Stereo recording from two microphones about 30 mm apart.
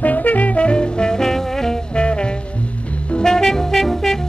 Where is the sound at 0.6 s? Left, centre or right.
Left.